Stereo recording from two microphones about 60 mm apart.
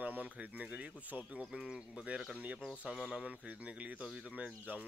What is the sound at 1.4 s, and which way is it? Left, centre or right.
Speech, centre.